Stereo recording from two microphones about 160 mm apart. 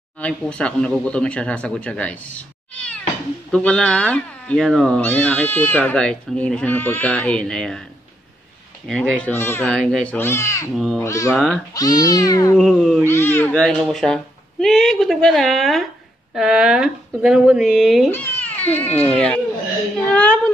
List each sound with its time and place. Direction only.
0.2 s speech: 5° left (ahead or behind)
8.8 s speech: 5° left (ahead or behind)
11.3 s speech: centre (ahead or behind)
11.7 s speech: 25° left (ahead or behind)
12.5 s speech: 5° left (ahead or behind)
13.0 s speech: 15° left (ahead or behind)
13.6 s speech: centre (ahead or behind)
18.1 s cat: 10° left (ahead or behind)
18.8 s speech: 10° left (ahead or behind)